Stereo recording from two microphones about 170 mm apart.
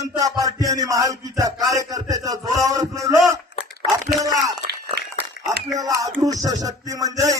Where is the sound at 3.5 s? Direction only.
90° left.